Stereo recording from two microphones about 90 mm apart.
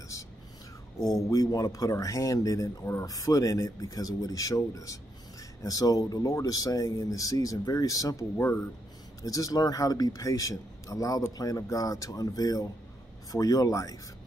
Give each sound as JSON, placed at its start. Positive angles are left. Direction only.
{"t": 1.0, "sound": "speech", "side_deg": 40}